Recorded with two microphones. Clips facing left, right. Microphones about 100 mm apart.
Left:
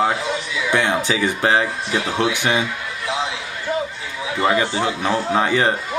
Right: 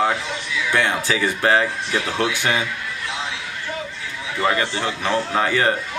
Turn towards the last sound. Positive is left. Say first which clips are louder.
# left 1 dB
turn(degrees=20)  # may be behind; listen again after turning